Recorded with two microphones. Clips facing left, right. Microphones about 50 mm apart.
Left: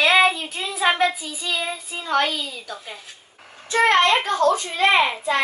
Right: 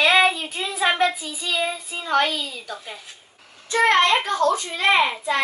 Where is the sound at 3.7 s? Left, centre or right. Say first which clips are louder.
Left 1 dB; left.